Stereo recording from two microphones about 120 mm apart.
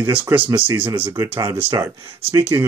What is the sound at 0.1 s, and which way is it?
Speech, 15° right (ahead or behind).